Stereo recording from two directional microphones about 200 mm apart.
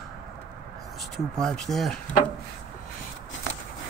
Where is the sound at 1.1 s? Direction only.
Centre (ahead or behind).